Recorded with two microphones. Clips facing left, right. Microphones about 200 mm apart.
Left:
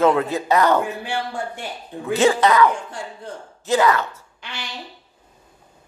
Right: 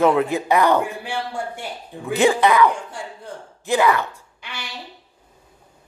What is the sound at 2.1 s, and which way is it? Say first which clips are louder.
Speech: even; 15° right (ahead or behind).